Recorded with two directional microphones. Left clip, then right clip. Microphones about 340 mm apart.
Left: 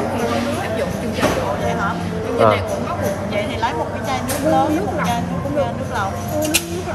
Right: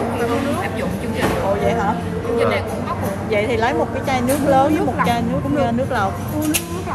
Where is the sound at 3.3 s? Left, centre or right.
Right.